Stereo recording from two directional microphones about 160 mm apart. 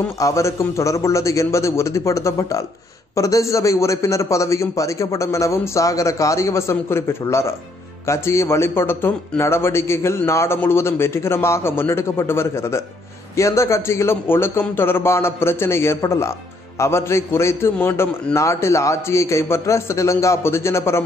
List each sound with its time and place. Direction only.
0.2 s a man's voice: 20° left (ahead or behind)